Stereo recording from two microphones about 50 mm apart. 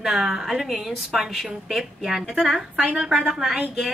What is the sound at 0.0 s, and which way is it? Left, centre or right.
A woman's voice, centre.